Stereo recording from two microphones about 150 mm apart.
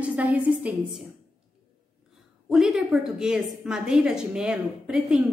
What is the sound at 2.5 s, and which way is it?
A woman's voice, 5° right (ahead or behind).